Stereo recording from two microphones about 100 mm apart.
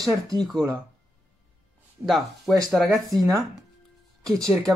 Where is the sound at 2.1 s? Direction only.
Centre (ahead or behind).